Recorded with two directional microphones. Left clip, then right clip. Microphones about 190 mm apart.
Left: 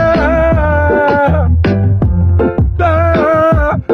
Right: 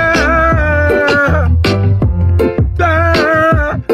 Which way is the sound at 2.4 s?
35° left (ahead or behind).